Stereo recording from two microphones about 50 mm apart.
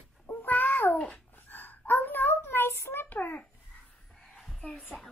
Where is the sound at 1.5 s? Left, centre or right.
Left.